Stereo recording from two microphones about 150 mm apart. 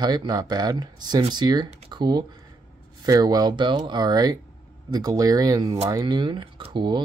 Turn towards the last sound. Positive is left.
turn(degrees=-30)  # may be behind; listen again after turning